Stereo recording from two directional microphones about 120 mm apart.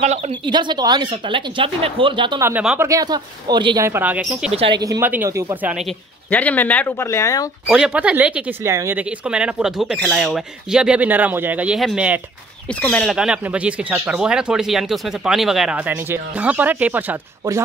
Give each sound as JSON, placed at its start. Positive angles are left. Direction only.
{"t": 0.5, "sound": "speech", "side_deg": -40}
{"t": 1.3, "sound": "speech", "side_deg": -45}
{"t": 2.8, "sound": "speech", "side_deg": -30}
{"t": 3.8, "sound": "speech", "side_deg": -15}
{"t": 4.5, "sound": "speech", "side_deg": -55}
{"t": 4.7, "sound": "speech", "side_deg": -30}
{"t": 5.0, "sound": "speech", "side_deg": -15}
{"t": 6.3, "sound": "speech", "side_deg": 15}
{"t": 7.1, "sound": "speech", "side_deg": 25}
{"t": 7.6, "sound": "speech", "side_deg": -5}
{"t": 8.6, "sound": "speech", "side_deg": -20}
{"t": 9.2, "sound": "speech", "side_deg": -10}
{"t": 12.8, "sound": "speech", "side_deg": 5}